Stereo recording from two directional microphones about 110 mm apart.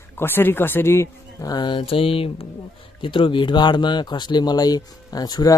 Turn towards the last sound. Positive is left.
turn(degrees=35)  # may be behind; listen again after turning